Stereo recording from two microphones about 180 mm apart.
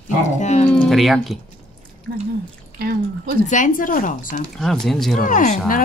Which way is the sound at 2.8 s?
60° right (ahead or behind).